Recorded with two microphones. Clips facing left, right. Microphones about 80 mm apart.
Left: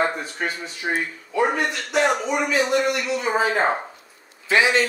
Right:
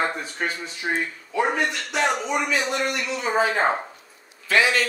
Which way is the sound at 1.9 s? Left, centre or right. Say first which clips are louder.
Left 3 dB; centre.